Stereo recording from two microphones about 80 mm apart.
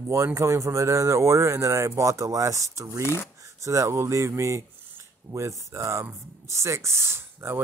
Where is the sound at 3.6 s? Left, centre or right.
Right.